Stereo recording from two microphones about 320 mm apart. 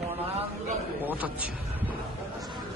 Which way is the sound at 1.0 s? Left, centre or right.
Centre.